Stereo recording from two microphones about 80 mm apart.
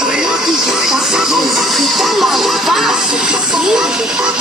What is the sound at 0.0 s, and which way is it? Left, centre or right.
Music, centre.